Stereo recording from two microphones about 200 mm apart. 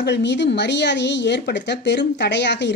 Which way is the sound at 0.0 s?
60° left (ahead or behind).